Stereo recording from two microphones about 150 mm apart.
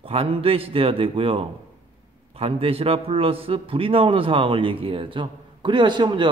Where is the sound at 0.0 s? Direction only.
40° right (ahead or behind).